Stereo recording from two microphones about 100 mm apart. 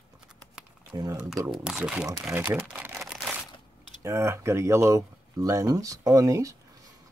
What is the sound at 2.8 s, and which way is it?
Crumpling, 25° right (ahead or behind).